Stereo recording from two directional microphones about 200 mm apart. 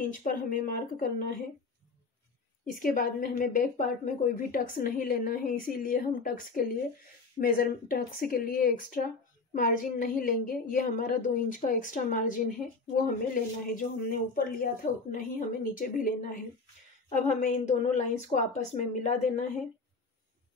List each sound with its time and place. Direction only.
0.0 s speech: 45° left (ahead or behind)
2.7 s a woman's voice: 45° left (ahead or behind)